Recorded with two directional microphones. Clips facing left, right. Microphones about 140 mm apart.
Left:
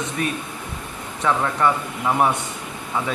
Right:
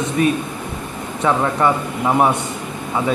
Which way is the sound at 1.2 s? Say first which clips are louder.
Right 3 dB; 25° right (ahead or behind).